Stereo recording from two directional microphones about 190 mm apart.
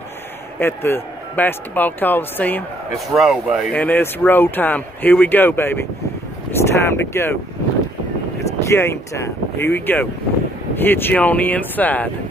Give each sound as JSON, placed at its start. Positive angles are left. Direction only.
{"t": 0.6, "sound": "a man's voice", "side_deg": 10}
{"t": 3.1, "sound": "speech", "side_deg": 0}
{"t": 3.7, "sound": "a man's voice", "side_deg": 10}
{"t": 8.6, "sound": "a man's voice", "side_deg": 15}